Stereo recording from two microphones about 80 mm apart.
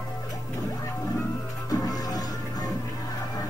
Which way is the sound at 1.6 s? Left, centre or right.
Left.